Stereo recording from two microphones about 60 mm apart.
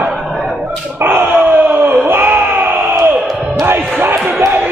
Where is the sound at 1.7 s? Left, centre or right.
Right.